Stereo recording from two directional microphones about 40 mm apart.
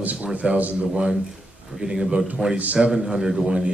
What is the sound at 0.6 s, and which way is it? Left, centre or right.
Speech, right.